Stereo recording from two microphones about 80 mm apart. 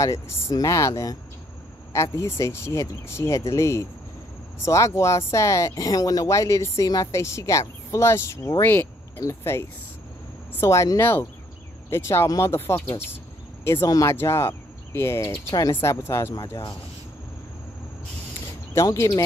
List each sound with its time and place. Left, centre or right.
0.0 s speech: left
8.6 s cricket: left
9.2 s speech: left
11.0 s speech: left
12.5 s speech: left
13.8 s speech: left
14.1 s speech: left
19.1 s speech: left